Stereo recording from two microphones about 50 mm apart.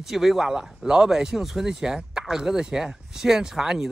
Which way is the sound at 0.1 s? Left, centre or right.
Centre.